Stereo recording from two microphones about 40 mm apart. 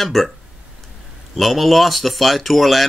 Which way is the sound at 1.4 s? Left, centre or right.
Centre.